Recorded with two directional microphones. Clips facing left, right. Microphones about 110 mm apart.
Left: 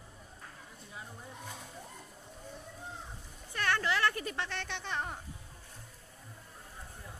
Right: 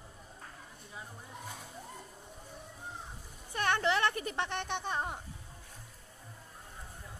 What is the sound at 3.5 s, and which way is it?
Speech, 20° right (ahead or behind).